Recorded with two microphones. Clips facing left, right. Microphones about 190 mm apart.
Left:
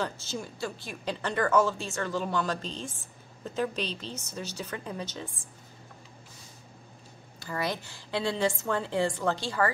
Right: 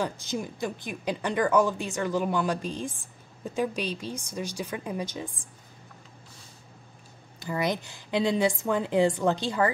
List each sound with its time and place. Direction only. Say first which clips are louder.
0.0 s a woman's voice: right 3 dB; 15° right (ahead or behind)
7.3 s a woman's voice: right 4 dB; 20° right (ahead or behind)